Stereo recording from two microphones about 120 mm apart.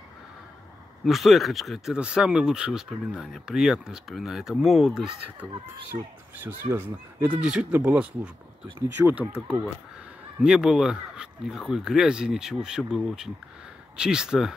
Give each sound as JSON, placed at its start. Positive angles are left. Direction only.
{"t": 1.0, "sound": "speech", "side_deg": 0}
{"t": 5.9, "sound": "speech", "side_deg": -60}
{"t": 6.3, "sound": "speech", "side_deg": -20}
{"t": 7.2, "sound": "speech", "side_deg": -10}
{"t": 10.4, "sound": "speech", "side_deg": -5}